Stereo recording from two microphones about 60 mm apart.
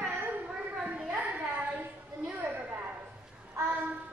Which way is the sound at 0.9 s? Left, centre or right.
Centre.